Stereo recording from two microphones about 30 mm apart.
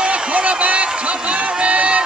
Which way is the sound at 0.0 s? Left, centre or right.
Right.